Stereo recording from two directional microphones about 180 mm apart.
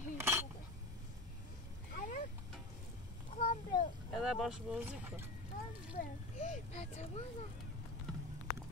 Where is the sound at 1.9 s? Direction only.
45° left (ahead or behind).